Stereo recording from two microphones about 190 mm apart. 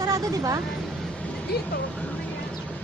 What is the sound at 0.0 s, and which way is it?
Speech, 20° right (ahead or behind).